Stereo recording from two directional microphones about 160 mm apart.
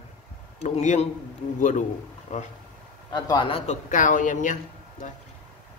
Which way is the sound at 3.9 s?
55° left (ahead or behind).